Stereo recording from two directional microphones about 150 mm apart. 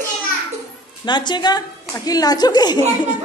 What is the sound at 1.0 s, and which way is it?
A child's voice, 30° left (ahead or behind).